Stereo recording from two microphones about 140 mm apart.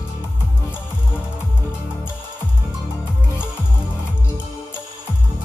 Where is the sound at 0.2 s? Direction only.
15° left (ahead or behind).